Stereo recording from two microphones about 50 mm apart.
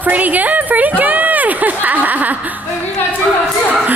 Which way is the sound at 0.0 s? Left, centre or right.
Right.